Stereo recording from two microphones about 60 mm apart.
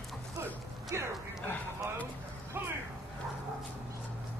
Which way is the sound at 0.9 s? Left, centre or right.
Right.